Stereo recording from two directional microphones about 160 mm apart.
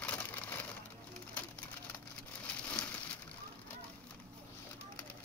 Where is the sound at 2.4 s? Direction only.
5° left (ahead or behind).